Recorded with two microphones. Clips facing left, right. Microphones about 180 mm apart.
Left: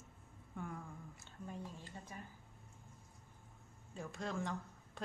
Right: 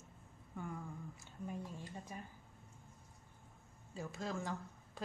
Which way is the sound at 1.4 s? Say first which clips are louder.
Right 3 dB; 15° right (ahead or behind).